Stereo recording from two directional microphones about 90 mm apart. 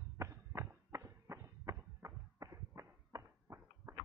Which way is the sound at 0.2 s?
30° right (ahead or behind).